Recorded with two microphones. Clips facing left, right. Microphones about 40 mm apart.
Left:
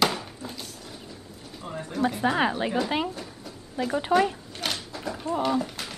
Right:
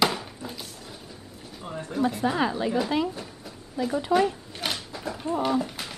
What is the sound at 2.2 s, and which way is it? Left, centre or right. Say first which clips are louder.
Speech: left 1 dB; left.